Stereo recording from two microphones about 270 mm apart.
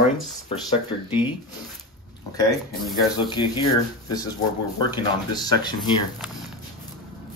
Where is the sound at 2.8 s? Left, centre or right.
Centre.